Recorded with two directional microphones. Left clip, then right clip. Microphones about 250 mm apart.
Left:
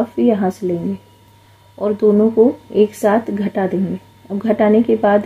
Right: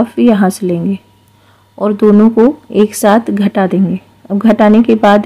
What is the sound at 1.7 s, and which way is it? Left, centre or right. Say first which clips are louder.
Speech: right 4 dB; right.